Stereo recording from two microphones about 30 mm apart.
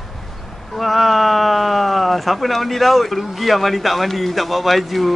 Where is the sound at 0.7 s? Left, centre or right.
Centre.